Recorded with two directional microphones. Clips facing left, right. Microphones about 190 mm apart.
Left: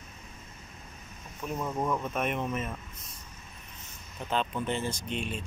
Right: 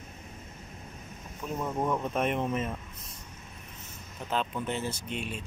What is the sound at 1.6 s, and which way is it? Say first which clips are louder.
Speech: right 1 dB; 5° right (ahead or behind).